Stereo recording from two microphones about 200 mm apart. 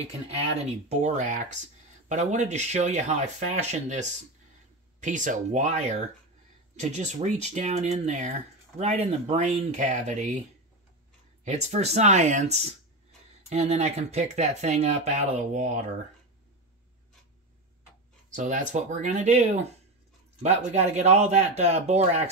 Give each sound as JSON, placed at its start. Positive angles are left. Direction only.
{"t": 0.0, "sound": "speech", "side_deg": -30}
{"t": 11.4, "sound": "speech", "side_deg": -35}
{"t": 18.3, "sound": "speech", "side_deg": -40}
{"t": 20.4, "sound": "speech", "side_deg": -35}